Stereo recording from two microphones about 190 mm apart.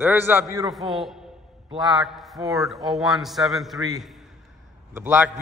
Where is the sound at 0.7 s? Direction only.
Centre (ahead or behind).